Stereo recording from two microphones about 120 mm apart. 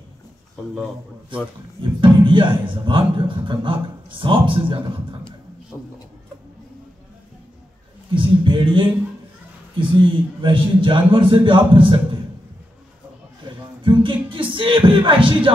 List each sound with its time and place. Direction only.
1.8 s speech: 45° right (ahead or behind)
5.7 s a man's voice: 20° left (ahead or behind)
8.1 s a man's voice: 45° right (ahead or behind)
13.5 s music: 45° right (ahead or behind)